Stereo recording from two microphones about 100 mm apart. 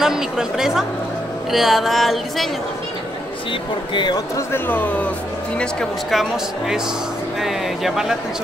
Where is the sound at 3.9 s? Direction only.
50° left (ahead or behind).